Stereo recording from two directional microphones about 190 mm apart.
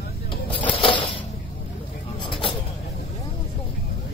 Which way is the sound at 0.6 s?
25° left (ahead or behind).